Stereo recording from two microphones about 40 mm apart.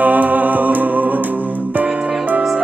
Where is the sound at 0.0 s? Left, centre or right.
Right.